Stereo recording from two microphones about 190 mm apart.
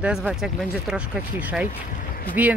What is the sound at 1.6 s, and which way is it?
Speech, 45° left (ahead or behind).